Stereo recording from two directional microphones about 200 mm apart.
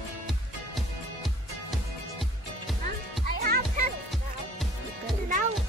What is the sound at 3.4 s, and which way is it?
Music, 45° right (ahead or behind).